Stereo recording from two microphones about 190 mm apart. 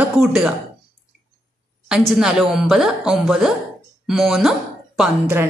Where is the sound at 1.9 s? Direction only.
5° right (ahead or behind).